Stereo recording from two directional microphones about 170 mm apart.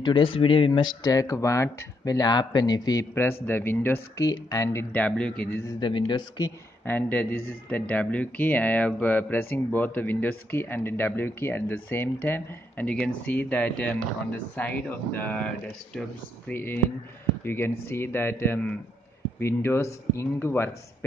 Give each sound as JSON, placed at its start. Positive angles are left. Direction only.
{"t": 0.0, "sound": "speech", "side_deg": 30}
{"t": 4.9, "sound": "a man's voice", "side_deg": 10}
{"t": 5.8, "sound": "speech", "side_deg": 30}
{"t": 6.8, "sound": "a man's voice", "side_deg": 10}